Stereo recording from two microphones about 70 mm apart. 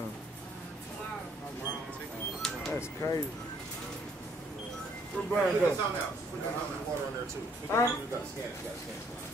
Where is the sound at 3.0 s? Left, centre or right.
Left.